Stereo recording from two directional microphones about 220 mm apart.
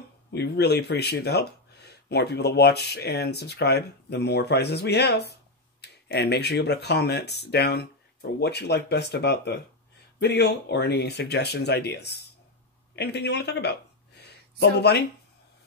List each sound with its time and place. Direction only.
0.3 s speech: 50° left (ahead or behind)